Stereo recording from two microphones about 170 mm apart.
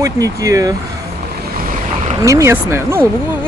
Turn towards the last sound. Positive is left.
turn(degrees=-15)  # may be behind; listen again after turning